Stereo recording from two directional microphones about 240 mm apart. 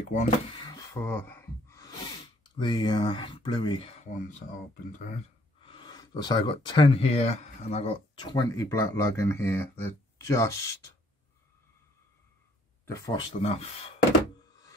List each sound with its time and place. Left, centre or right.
0.1 s a sound: centre
2.5 s speech: centre
5.6 s speech: left
12.8 s speech: centre